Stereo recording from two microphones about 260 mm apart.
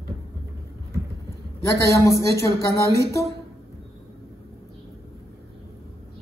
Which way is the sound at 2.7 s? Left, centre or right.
Centre.